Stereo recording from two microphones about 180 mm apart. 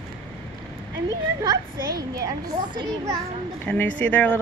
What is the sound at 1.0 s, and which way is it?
A woman's voice, 20° right (ahead or behind).